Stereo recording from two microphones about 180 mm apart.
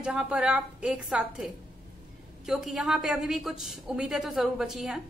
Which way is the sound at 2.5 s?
Centre (ahead or behind).